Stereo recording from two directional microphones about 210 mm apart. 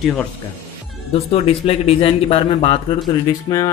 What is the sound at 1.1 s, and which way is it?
Speech, 30° left (ahead or behind).